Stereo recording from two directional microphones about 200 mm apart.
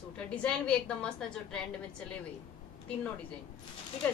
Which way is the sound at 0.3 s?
5° left (ahead or behind).